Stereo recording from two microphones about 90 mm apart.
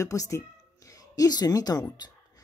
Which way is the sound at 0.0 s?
35° left (ahead or behind).